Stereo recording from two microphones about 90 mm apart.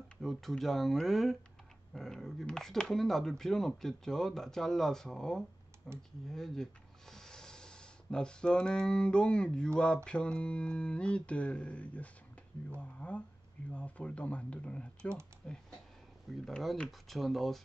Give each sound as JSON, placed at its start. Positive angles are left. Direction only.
{"t": 0.2, "sound": "speech", "side_deg": 0}